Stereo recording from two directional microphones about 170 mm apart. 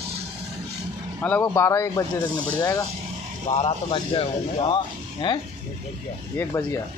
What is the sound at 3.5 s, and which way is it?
A man's voice, 35° left (ahead or behind).